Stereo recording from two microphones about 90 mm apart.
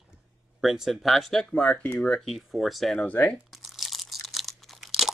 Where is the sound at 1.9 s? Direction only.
5° left (ahead or behind).